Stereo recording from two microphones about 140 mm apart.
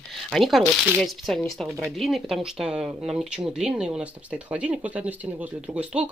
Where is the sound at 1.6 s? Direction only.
20° right (ahead or behind).